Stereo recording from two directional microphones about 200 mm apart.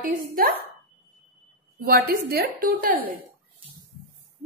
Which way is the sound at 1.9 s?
50° right (ahead or behind).